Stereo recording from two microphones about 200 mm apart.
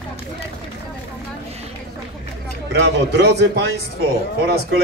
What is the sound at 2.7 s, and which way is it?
A man's voice, 60° right (ahead or behind).